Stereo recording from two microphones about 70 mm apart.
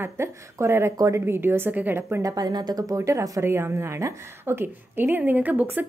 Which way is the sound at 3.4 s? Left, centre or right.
Right.